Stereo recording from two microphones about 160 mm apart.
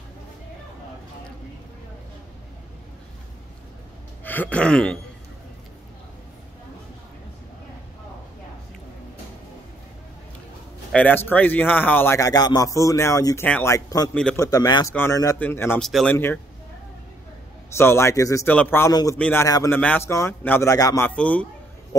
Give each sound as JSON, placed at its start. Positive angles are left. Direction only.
{"t": 4.2, "sound": "a sound", "side_deg": 10}
{"t": 10.9, "sound": "a man's voice", "side_deg": 10}
{"t": 15.8, "sound": "speech", "side_deg": 0}
{"t": 17.7, "sound": "a man's voice", "side_deg": 15}
{"t": 19.4, "sound": "a man's voice", "side_deg": 20}
{"t": 21.1, "sound": "a man's voice", "side_deg": 10}